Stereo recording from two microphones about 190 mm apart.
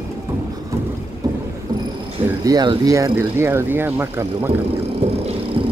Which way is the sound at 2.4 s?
20° right (ahead or behind).